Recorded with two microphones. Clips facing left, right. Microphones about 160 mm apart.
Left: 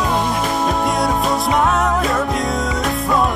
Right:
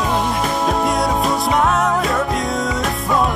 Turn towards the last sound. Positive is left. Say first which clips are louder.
# left 1 dB
turn(degrees=0)  # may be behind; listen again after turning